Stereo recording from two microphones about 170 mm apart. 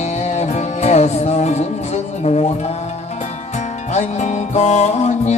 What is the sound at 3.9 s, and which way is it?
Music, 45° left (ahead or behind).